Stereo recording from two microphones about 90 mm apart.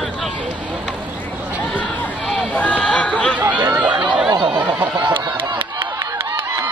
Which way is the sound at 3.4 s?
20° right (ahead or behind).